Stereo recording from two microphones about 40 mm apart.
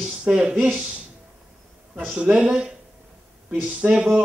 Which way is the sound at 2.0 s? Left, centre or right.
Right.